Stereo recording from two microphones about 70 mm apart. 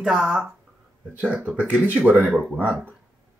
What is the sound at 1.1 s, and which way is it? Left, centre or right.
Speech, right.